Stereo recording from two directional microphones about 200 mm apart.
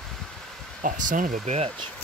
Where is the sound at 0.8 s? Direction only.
40° right (ahead or behind).